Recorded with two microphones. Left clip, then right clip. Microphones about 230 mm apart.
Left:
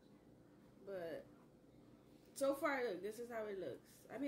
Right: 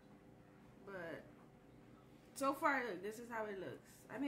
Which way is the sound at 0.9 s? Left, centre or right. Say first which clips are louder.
Left 2 dB; centre.